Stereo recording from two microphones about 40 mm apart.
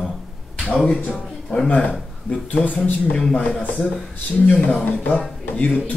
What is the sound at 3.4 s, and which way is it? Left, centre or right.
Speech, left.